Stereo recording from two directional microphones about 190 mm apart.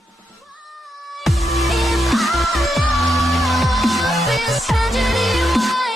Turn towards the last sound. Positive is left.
turn(degrees=0)  # may be behind; listen again after turning